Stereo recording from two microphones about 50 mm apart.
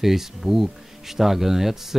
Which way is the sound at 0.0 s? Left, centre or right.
Centre.